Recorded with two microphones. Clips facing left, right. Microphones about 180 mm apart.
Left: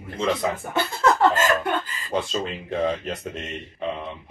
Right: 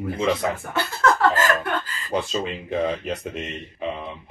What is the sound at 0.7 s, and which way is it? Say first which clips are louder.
Speech: left 1 dB; 20° left (ahead or behind).